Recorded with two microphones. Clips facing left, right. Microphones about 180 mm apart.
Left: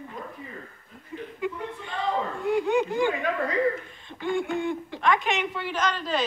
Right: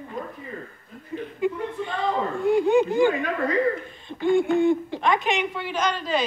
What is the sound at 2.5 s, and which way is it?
Speech, 30° right (ahead or behind).